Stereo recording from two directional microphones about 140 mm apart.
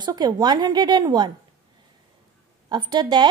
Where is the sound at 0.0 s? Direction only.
30° right (ahead or behind).